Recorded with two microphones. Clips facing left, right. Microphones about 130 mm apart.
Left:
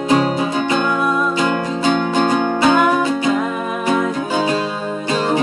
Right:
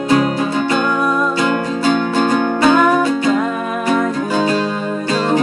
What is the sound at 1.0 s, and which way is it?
Music, centre (ahead or behind).